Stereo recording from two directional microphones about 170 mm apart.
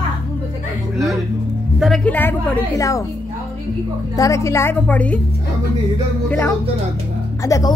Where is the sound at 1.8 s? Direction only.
5° left (ahead or behind).